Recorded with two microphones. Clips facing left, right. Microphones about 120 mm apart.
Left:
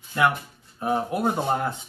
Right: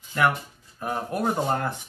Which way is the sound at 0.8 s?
20° left (ahead or behind).